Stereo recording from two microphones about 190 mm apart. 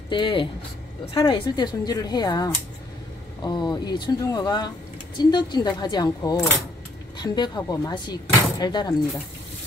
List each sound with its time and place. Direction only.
0.1 s speech: 25° left (ahead or behind)